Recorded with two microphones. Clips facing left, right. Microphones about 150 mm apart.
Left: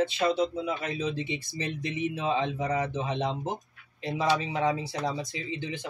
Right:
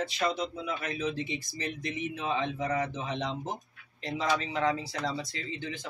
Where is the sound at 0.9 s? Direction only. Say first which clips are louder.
Left 2 dB; 20° left (ahead or behind).